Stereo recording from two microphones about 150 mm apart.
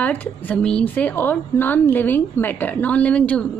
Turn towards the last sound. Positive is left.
turn(degrees=5)  # may be behind; listen again after turning